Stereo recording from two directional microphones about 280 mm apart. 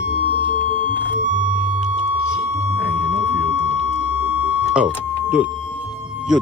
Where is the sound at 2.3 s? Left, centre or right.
Centre.